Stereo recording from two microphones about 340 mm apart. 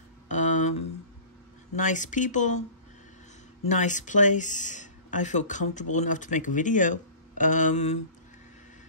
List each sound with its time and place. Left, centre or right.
0.3 s a sound: left
1.8 s speech: left
3.6 s speech: left